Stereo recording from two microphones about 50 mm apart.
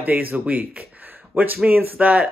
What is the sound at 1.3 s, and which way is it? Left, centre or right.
Speech, right.